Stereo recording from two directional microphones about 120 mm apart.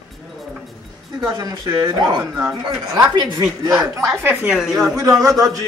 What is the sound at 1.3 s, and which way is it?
A man's voice, 30° right (ahead or behind).